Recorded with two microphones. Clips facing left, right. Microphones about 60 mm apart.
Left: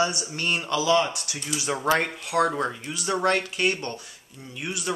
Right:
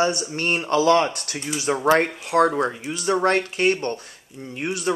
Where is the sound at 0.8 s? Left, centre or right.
Right.